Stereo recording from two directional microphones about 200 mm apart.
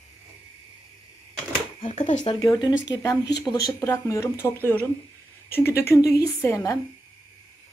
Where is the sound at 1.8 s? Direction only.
35° left (ahead or behind).